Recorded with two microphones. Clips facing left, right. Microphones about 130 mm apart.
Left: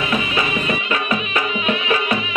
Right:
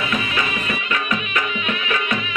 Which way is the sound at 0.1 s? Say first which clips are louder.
Left 3 dB; 25° left (ahead or behind).